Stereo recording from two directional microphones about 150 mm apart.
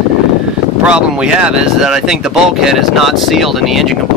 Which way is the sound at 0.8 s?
5° right (ahead or behind).